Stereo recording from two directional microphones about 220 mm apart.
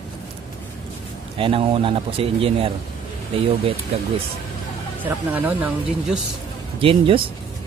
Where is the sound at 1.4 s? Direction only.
25° right (ahead or behind).